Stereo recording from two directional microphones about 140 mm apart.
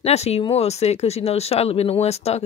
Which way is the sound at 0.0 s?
50° left (ahead or behind).